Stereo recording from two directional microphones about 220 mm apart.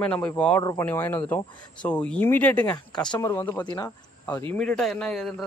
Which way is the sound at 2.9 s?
20° left (ahead or behind).